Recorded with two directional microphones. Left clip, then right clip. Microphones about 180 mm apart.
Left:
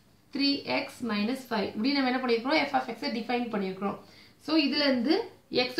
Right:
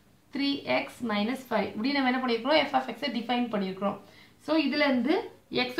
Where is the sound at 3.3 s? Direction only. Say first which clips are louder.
Right 1 dB; 30° right (ahead or behind).